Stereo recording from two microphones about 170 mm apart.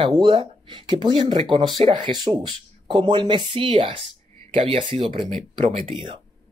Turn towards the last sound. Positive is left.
turn(degrees=-35)  # may be behind; listen again after turning